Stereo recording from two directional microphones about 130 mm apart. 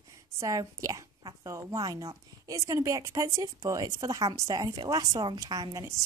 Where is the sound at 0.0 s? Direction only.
25° right (ahead or behind).